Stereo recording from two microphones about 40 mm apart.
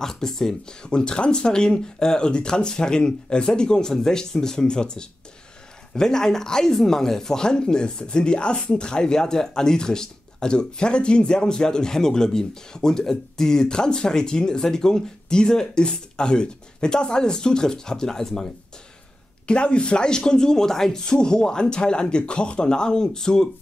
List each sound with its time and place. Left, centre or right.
0.0 s speech: centre
19.4 s speech: left